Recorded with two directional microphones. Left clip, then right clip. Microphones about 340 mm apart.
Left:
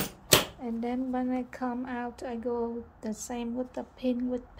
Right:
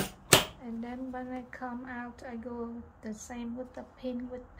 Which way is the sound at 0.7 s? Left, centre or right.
Left.